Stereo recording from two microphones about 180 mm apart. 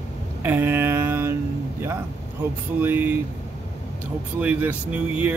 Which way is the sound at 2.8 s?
10° right (ahead or behind).